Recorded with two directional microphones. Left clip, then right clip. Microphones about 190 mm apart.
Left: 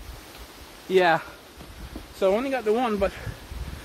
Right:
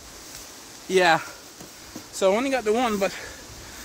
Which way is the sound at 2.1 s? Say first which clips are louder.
Right 2 dB; 25° right (ahead or behind).